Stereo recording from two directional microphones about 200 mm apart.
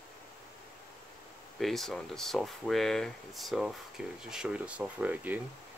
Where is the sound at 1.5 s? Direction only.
Centre (ahead or behind).